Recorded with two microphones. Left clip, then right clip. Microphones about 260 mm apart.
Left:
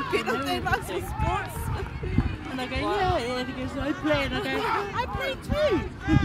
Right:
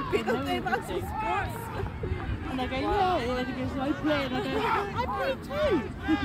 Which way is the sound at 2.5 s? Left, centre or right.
Left.